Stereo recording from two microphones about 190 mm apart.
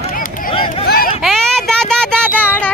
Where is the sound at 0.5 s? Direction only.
30° left (ahead or behind).